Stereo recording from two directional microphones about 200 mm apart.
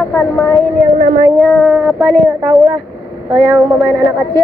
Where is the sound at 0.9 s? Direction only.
35° right (ahead or behind).